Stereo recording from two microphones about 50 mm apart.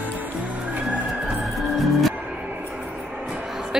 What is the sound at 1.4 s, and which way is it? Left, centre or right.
Music, centre.